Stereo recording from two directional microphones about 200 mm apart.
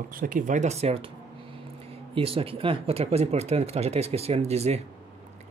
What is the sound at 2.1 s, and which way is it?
Speech, 25° right (ahead or behind).